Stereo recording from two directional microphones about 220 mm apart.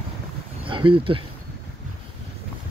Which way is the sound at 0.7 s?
25° right (ahead or behind).